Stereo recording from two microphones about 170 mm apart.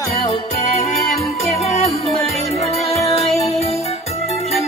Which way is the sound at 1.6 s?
40° left (ahead or behind).